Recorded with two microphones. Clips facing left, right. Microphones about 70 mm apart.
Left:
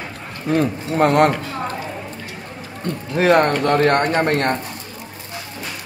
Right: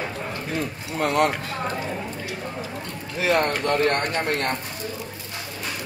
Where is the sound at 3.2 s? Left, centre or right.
Left.